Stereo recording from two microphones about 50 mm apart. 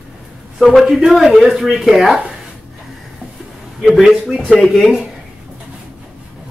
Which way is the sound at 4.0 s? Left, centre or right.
Centre.